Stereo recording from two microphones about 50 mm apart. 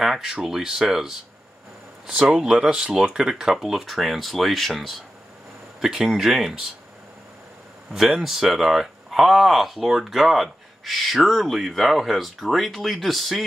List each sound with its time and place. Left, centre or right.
0.0 s speech: centre
2.0 s speech: right
7.9 s speech: centre